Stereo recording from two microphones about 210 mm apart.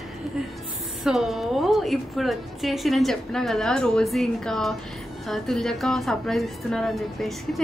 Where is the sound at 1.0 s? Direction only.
Centre (ahead or behind).